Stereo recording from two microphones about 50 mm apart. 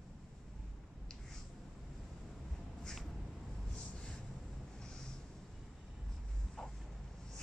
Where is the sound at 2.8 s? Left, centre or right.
Centre.